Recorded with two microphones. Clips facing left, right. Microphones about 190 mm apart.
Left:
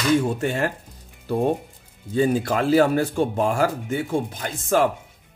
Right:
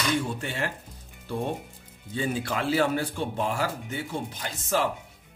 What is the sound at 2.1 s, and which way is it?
Speech, 40° left (ahead or behind).